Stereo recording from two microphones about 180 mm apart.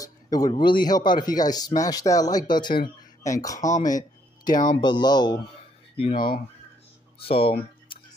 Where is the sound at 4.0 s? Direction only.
20° left (ahead or behind).